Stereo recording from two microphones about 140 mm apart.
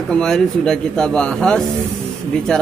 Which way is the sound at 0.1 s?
5° left (ahead or behind).